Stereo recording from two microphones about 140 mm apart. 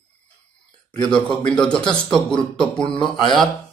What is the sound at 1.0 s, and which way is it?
A man's voice, 5° left (ahead or behind).